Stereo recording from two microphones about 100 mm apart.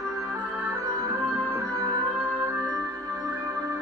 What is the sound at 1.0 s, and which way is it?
Music, 30° right (ahead or behind).